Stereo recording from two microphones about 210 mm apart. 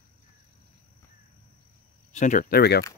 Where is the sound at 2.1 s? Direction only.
35° left (ahead or behind).